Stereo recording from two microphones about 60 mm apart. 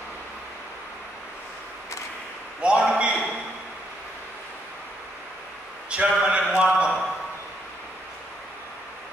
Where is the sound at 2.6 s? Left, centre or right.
Centre.